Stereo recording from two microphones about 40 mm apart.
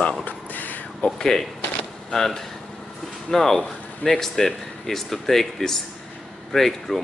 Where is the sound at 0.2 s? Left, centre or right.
Left.